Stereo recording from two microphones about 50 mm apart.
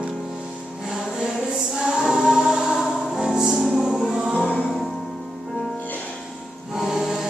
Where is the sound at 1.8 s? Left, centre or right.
Centre.